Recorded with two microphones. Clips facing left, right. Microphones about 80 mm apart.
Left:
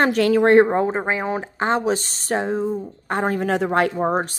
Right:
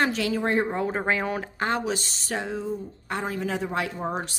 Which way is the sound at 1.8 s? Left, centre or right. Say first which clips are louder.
Left 7 dB; left.